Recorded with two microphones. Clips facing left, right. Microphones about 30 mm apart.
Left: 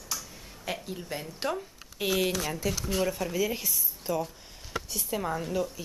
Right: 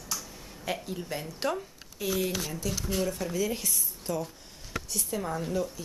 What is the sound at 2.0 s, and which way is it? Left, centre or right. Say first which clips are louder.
Speech: left 3 dB; left.